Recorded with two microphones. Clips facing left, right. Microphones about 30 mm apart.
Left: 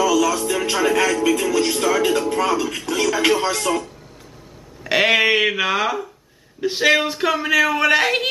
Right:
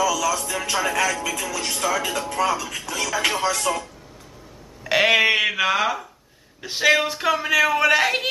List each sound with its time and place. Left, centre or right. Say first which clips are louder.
0.0 s music: left 4 dB; centre
1.2 s speech: left 9 dB; centre
4.8 s speech: left 1 dB; centre